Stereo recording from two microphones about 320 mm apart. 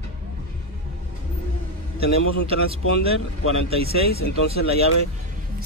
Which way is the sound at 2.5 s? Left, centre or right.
Centre.